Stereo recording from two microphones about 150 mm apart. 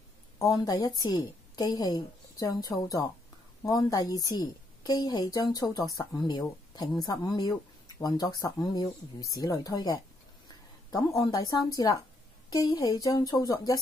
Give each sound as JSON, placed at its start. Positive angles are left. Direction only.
{"t": 0.4, "sound": "a woman's voice", "side_deg": 25}